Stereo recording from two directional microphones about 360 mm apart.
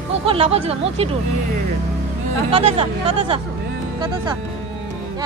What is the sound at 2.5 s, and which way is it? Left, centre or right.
Speech, centre.